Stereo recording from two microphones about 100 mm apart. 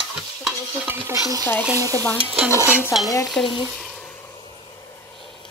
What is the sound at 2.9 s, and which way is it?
Speech, 5° right (ahead or behind).